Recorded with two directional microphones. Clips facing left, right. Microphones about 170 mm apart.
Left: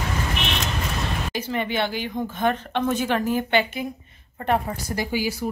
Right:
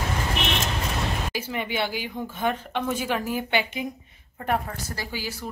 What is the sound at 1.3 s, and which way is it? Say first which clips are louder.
Speech: left 3 dB; 10° right (ahead or behind).